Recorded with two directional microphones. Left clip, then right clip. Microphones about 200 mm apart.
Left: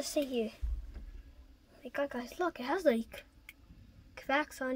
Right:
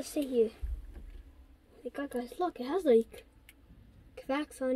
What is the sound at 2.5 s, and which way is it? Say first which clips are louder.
Speech: right 1 dB; 55° left (ahead or behind).